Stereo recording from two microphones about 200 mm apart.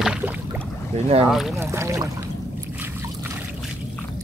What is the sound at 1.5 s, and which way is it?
Speech, 15° right (ahead or behind).